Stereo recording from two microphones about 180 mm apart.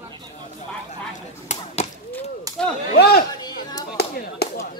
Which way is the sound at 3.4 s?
20° left (ahead or behind).